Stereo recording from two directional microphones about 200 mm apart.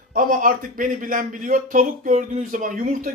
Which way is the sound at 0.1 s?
45° right (ahead or behind).